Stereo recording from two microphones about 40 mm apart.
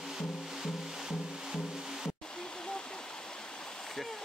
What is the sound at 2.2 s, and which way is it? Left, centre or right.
Waterfall, centre.